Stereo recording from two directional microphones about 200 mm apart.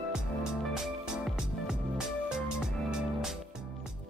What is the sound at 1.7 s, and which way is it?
Music, 5° right (ahead or behind).